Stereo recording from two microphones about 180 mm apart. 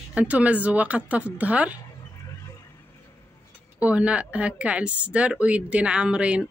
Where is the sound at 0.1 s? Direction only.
5° right (ahead or behind).